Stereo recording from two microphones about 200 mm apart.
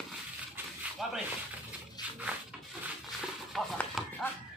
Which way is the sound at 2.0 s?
20° left (ahead or behind).